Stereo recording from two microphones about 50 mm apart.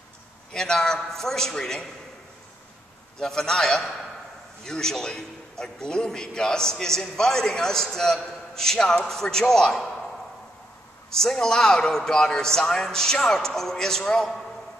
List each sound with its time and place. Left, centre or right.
0.5 s a man's voice: centre
3.2 s a man's voice: centre
11.1 s a man's voice: centre